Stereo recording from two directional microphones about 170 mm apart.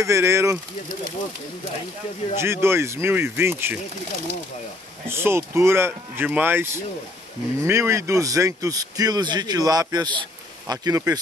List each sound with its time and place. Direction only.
0.0 s speech: 15° right (ahead or behind)
2.3 s speech: 15° right (ahead or behind)
5.0 s a man's voice: 15° right (ahead or behind)